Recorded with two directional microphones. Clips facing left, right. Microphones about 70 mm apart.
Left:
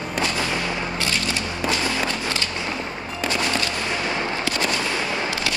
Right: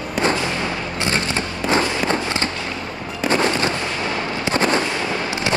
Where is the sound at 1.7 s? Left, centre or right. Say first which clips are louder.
Right 7 dB; right.